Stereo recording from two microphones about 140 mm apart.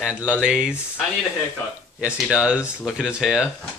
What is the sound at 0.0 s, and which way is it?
Speech, 5° right (ahead or behind).